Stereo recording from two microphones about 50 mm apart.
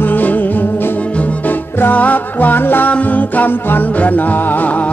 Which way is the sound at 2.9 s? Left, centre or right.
Left.